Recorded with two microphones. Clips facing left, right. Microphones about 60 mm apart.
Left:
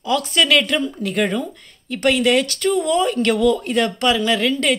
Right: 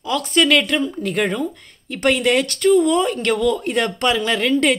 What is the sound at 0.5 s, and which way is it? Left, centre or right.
Speech, centre.